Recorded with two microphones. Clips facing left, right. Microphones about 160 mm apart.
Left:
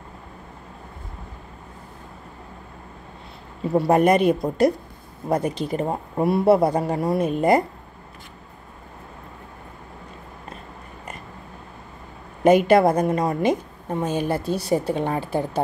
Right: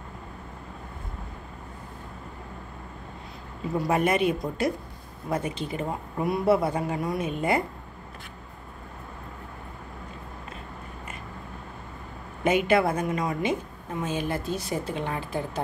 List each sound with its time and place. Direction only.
3.7 s a woman's voice: 35° left (ahead or behind)
12.4 s a woman's voice: 40° left (ahead or behind)